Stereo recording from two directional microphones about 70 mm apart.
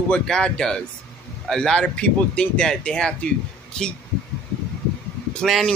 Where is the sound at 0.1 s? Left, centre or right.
Centre.